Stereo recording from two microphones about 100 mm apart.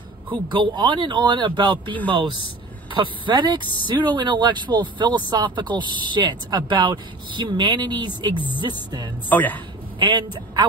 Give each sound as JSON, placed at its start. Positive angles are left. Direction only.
{"t": 0.3, "sound": "speech", "side_deg": -55}
{"t": 9.3, "sound": "a man's voice", "side_deg": 15}
{"t": 9.9, "sound": "a woman's voice", "side_deg": -50}